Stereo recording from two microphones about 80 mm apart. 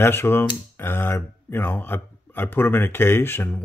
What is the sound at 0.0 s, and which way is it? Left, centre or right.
Speech, left.